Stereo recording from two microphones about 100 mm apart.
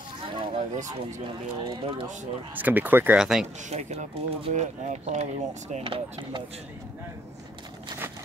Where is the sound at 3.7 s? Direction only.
90° right.